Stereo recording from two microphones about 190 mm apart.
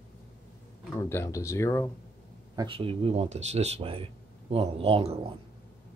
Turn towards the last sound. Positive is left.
turn(degrees=-30)  # may be behind; listen again after turning